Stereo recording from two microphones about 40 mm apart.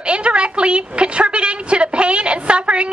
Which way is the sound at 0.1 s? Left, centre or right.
Right.